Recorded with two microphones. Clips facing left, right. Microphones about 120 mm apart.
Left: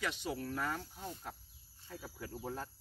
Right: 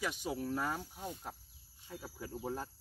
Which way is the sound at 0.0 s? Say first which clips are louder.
Right 1 dB; 10° right (ahead or behind).